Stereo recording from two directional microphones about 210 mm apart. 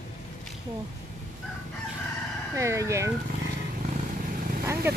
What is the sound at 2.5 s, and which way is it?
Speech, 15° right (ahead or behind).